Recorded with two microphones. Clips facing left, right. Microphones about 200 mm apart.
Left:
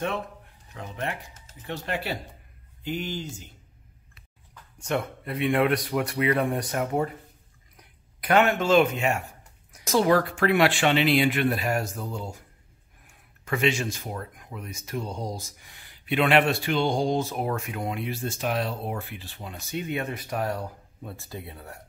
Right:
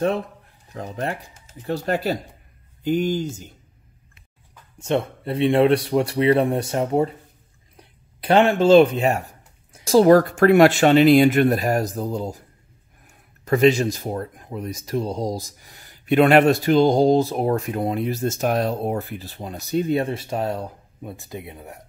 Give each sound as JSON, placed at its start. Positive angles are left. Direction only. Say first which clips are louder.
{"t": 0.7, "sound": "speech", "louder": "right 5 dB", "side_deg": -35}
{"t": 4.7, "sound": "speech", "louder": "right 6 dB", "side_deg": -25}